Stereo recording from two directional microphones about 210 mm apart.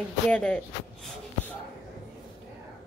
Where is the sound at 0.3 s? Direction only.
5° left (ahead or behind).